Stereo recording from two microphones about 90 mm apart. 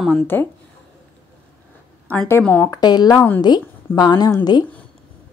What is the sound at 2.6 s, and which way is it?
A woman's voice, 45° left (ahead or behind).